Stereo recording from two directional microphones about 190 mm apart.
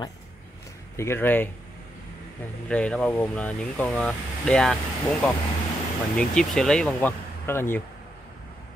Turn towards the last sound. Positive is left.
turn(degrees=10)  # may be behind; listen again after turning